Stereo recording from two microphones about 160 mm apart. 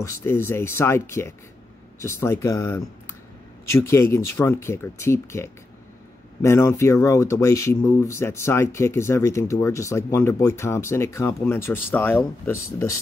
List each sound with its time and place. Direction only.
0.0 s speech: 15° left (ahead or behind)